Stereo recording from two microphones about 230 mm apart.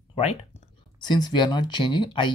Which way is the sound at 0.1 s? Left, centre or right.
Left.